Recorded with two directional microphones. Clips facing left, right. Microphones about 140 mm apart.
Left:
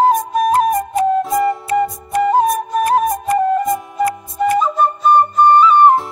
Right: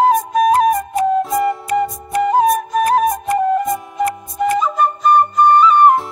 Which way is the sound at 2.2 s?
40° left (ahead or behind).